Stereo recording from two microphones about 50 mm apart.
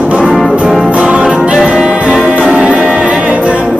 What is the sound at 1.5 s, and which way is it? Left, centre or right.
Music, centre.